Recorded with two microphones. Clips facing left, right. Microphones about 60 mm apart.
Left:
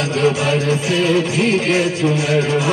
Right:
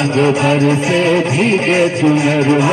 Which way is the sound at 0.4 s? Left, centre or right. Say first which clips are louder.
Right 5 dB; right.